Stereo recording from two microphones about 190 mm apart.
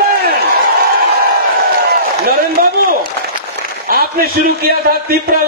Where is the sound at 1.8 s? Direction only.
55° right (ahead or behind).